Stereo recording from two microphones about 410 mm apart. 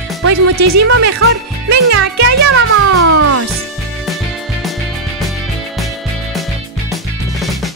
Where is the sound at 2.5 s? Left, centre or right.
Right.